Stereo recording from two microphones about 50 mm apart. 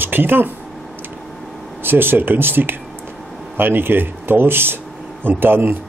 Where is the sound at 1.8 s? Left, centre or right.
Right.